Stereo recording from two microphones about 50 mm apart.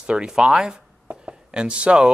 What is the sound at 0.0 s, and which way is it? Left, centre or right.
Speech, centre.